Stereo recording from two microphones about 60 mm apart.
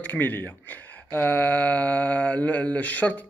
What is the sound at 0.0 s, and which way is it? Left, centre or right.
Speech, left.